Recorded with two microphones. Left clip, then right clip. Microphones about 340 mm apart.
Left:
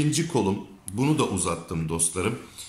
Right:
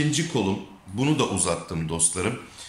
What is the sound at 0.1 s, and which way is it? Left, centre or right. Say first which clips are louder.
A man's voice: even; centre.